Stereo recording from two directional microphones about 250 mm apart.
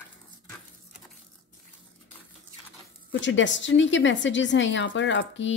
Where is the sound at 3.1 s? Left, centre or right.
Left.